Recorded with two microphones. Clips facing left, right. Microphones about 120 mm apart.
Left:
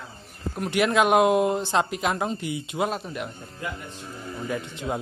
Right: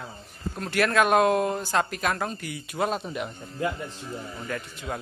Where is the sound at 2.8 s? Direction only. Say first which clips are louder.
Right 2 dB; centre (ahead or behind).